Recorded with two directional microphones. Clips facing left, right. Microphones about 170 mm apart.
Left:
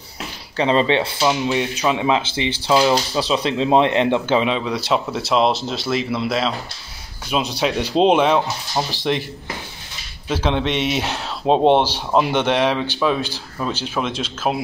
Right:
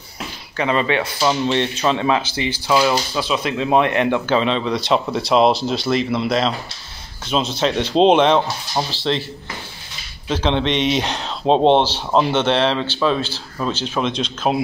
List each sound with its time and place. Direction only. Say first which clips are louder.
0.6 s speech: left 2 dB; 30° left (ahead or behind)
1.2 s speech: right 1 dB; 10° left (ahead or behind)
4.5 s speech: right 2 dB; 10° left (ahead or behind)
8.9 s speech: even; 15° left (ahead or behind)
10.2 s speech: right 1 dB; 10° left (ahead or behind)